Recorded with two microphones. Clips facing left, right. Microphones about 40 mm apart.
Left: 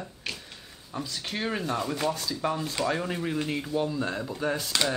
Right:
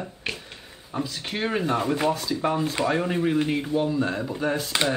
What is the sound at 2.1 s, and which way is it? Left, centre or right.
Speech, centre.